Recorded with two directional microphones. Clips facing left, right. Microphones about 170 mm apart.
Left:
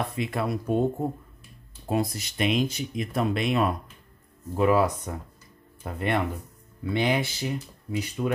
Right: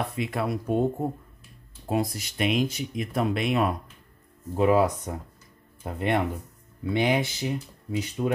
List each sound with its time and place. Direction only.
0.2 s speech: 10° right (ahead or behind)
4.6 s speech: 20° right (ahead or behind)